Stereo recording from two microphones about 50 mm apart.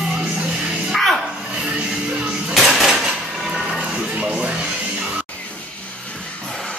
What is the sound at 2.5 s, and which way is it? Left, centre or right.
Dishes, centre.